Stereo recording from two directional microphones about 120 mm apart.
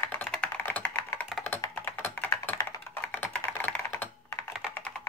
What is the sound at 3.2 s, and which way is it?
Computer keyboard, 15° left (ahead or behind).